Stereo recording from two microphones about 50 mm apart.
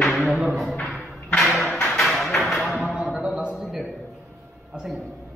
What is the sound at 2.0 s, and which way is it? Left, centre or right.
Music, centre.